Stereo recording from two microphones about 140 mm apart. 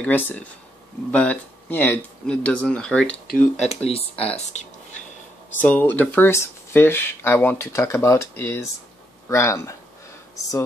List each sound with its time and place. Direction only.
0.0 s speech: 10° left (ahead or behind)
3.5 s speech: 45° left (ahead or behind)
5.6 s speech: 15° left (ahead or behind)